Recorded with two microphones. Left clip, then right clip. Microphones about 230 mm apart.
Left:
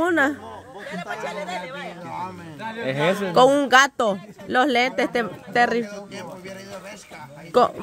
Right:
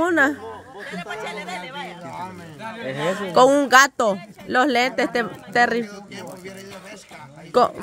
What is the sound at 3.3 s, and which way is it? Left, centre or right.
Speech, centre.